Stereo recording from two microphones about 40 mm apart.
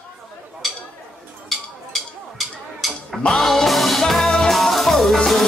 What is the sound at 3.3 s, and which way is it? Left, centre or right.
Music, centre.